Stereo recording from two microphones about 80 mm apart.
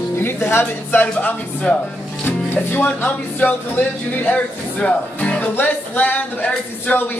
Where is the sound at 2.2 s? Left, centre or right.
Left.